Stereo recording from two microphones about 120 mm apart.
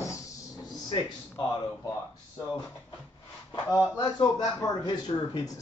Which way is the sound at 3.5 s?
30° left (ahead or behind).